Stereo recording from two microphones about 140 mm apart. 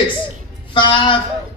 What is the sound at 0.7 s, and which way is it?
Speech, 35° left (ahead or behind).